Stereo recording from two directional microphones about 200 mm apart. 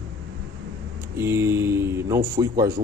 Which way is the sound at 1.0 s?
15° right (ahead or behind).